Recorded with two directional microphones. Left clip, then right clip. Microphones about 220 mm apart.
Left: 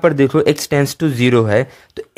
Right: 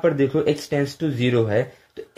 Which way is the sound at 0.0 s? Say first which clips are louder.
Left 7 dB; 35° left (ahead or behind).